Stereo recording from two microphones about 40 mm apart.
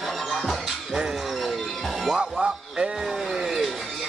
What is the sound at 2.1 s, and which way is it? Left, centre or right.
Music, centre.